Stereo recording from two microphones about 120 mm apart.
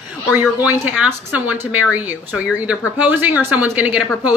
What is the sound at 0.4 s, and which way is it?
A woman's voice, 15° right (ahead or behind).